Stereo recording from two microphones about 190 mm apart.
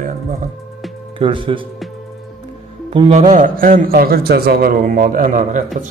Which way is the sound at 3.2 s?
40° right (ahead or behind).